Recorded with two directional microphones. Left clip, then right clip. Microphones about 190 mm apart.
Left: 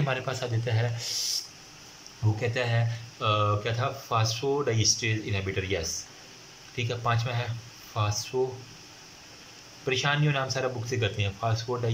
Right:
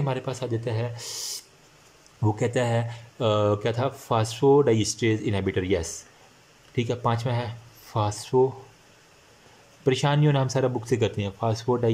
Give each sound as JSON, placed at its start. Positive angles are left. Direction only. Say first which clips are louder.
{"t": 0.0, "sound": "speech", "louder": "even", "side_deg": -20}
{"t": 2.4, "sound": "speech", "louder": "right 3 dB", "side_deg": -30}
{"t": 9.8, "sound": "speech", "louder": "right 3 dB", "side_deg": -30}